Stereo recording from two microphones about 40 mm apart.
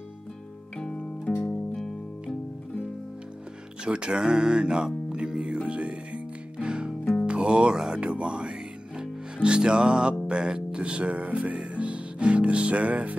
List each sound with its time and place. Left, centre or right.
1.3 s music: left
3.8 s speech: right
5.3 s music: centre
5.7 s music: right
7.5 s speech: centre
8.0 s music: right
10.2 s speech: right
11.5 s music: right